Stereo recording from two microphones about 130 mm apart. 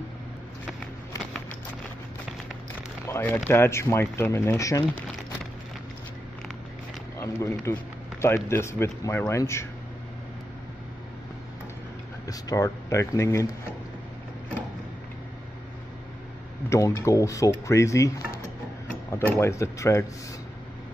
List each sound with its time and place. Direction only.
3.1 s speech: 15° left (ahead or behind)
7.2 s speech: 20° left (ahead or behind)
7.7 s a sound: 15° left (ahead or behind)
8.5 s speech: 20° left (ahead or behind)
12.3 s speech: 25° left (ahead or behind)
16.6 s speech: 25° left (ahead or behind)